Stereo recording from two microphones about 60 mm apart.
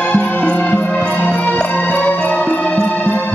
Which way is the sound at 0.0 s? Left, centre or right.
Centre.